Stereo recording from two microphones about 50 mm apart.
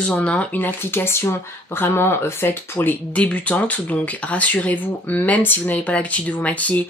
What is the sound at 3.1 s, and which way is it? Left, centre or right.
A woman's voice, left.